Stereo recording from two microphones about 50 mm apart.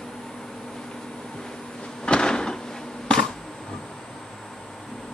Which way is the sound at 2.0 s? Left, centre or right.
Centre.